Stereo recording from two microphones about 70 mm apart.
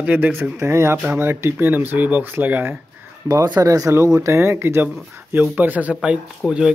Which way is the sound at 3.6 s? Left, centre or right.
Right.